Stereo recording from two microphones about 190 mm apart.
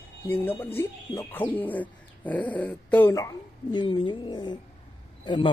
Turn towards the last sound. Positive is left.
turn(degrees=25)  # may be behind; listen again after turning